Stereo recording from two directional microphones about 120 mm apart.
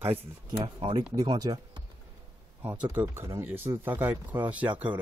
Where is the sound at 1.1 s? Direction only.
35° right (ahead or behind).